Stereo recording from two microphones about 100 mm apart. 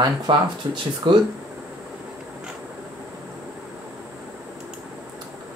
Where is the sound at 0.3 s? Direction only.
55° right (ahead or behind).